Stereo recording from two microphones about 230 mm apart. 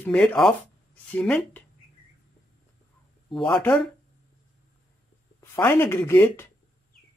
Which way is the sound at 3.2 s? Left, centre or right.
Centre.